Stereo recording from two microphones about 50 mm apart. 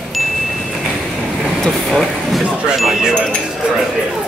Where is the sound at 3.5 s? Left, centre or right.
Centre.